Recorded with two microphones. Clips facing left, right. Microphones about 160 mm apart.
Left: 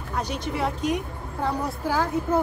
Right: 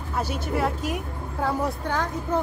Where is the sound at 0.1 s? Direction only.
5° right (ahead or behind).